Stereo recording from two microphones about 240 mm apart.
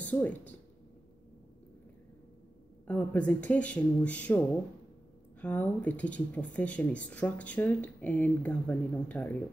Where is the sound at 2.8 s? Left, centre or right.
Centre.